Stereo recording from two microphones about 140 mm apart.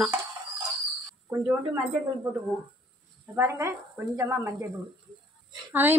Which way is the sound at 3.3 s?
20° right (ahead or behind).